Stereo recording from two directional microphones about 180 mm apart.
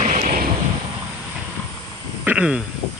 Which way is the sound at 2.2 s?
5° right (ahead or behind).